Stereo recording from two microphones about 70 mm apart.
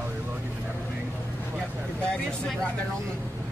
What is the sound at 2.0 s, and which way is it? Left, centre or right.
Speech, centre.